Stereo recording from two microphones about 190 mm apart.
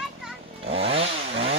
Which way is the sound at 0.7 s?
30° right (ahead or behind).